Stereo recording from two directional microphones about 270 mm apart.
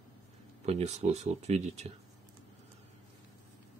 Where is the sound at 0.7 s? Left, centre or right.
Right.